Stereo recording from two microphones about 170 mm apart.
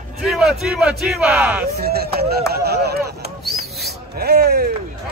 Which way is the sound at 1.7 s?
65° right (ahead or behind).